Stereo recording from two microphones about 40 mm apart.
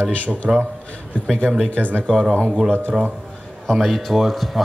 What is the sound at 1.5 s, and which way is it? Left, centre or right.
Speech, right.